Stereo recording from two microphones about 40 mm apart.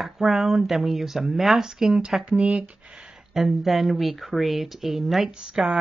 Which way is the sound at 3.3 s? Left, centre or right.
Centre.